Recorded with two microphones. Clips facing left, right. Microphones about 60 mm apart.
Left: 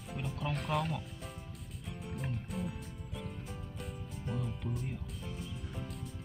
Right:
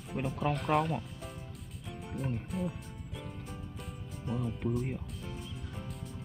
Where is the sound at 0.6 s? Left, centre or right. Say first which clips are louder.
Right 5 dB; right.